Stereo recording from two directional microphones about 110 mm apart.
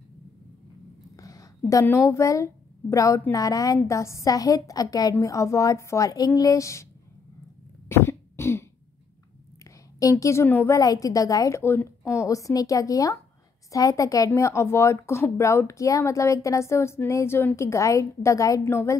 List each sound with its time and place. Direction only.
1.1 s a woman's voice: 30° left (ahead or behind)
7.9 s cough: 25° left (ahead or behind)
9.9 s speech: 30° left (ahead or behind)
10.8 s a woman's voice: 35° left (ahead or behind)